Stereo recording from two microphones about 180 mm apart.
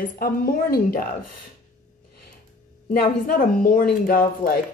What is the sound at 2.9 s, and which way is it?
Speech, 55° left (ahead or behind).